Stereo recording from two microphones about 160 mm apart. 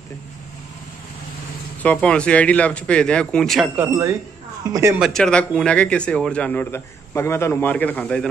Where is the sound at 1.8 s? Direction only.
5° left (ahead or behind).